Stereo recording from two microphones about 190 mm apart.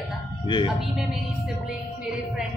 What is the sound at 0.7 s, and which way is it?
Speech, centre (ahead or behind).